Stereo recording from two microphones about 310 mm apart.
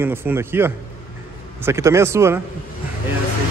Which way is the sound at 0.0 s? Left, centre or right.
Centre.